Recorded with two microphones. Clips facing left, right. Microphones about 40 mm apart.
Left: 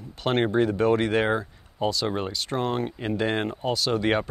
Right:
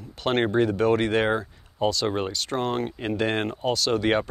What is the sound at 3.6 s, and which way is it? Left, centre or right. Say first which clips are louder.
Speech: right 3 dB; right.